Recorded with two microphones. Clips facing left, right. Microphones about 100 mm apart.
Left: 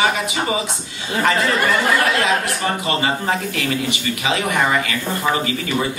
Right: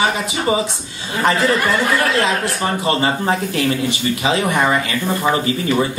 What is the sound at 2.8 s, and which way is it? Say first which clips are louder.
Speech: right 4 dB; 30° right (ahead or behind).